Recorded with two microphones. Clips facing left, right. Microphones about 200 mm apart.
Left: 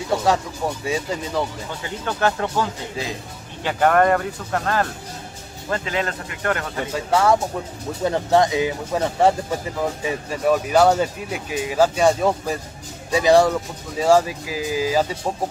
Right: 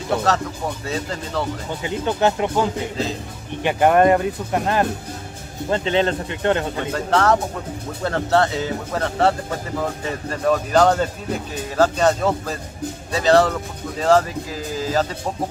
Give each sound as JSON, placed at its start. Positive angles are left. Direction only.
{"t": 0.1, "sound": "speech", "side_deg": 10}
{"t": 1.7, "sound": "speech", "side_deg": -20}
{"t": 5.7, "sound": "speech", "side_deg": -30}
{"t": 6.9, "sound": "speech", "side_deg": 10}